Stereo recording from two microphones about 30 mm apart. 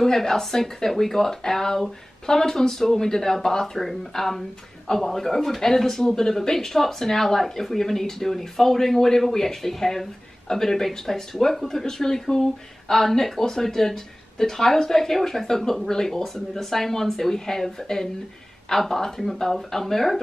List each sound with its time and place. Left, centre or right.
0.0 s speech: centre